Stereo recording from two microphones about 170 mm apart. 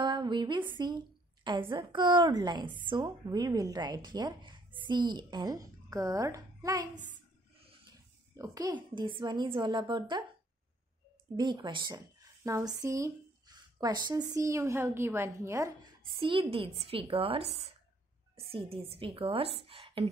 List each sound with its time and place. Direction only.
0.0 s a sound: 25° right (ahead or behind)
0.7 s a woman's voice: 25° right (ahead or behind)
8.4 s a woman's voice: 20° right (ahead or behind)
11.3 s a woman's voice: 25° right (ahead or behind)
16.2 s a woman's voice: 30° right (ahead or behind)